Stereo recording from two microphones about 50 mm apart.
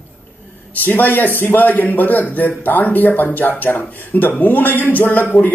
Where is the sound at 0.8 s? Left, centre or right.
Left.